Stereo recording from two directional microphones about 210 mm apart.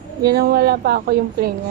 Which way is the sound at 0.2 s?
50° right (ahead or behind).